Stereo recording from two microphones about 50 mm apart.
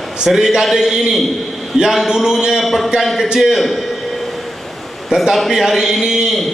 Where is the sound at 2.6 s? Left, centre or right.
Centre.